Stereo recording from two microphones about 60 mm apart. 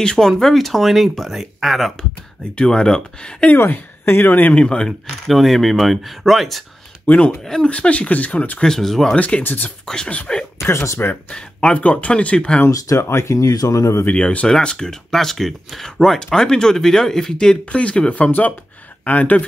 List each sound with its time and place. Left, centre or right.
0.0 s speech: centre
3.5 s speech: left
4.6 s speech: centre
7.1 s speech: left
8.6 s speech: centre
9.1 s speech: centre
9.4 s speech: left
9.8 s speech: centre
10.6 s speech: left
11.2 s speech: centre
12.7 s speech: left
13.1 s speech: left
13.5 s speech: left
14.1 s speech: centre